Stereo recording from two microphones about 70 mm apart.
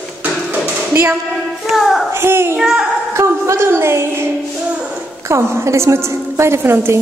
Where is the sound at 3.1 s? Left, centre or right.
Right.